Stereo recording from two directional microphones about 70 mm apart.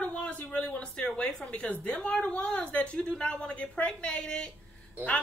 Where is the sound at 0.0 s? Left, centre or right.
Centre.